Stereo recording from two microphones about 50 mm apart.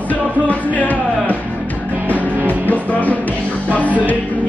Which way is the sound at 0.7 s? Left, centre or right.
Left.